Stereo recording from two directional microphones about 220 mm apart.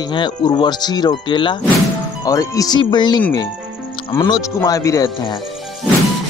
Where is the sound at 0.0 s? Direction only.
20° left (ahead or behind).